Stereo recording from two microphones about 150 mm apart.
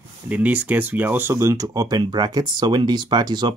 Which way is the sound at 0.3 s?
10° right (ahead or behind).